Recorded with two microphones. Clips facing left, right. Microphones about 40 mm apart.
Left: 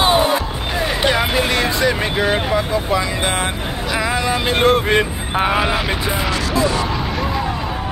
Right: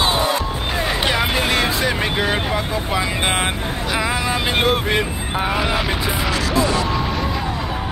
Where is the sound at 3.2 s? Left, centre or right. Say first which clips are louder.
Even; right.